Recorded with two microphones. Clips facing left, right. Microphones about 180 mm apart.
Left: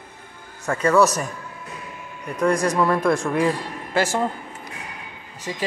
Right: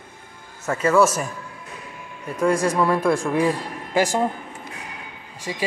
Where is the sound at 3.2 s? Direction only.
10° right (ahead or behind).